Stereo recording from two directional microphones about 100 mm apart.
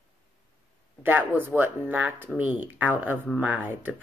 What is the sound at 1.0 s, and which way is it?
Speech, 20° right (ahead or behind).